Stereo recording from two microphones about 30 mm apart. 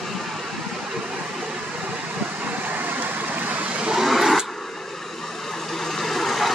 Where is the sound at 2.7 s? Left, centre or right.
Right.